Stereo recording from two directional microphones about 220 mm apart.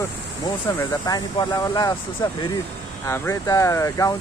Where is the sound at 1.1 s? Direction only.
20° left (ahead or behind).